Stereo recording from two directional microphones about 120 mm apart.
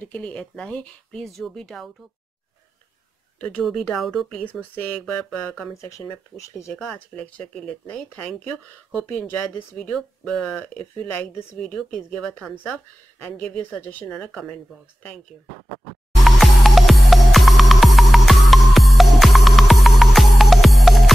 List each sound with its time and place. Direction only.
0.0 s speech: 10° left (ahead or behind)
3.3 s speech: 10° left (ahead or behind)
3.6 s speech: centre (ahead or behind)
5.8 s speech: 25° left (ahead or behind)
7.2 s speech: 10° left (ahead or behind)
16.3 s music: centre (ahead or behind)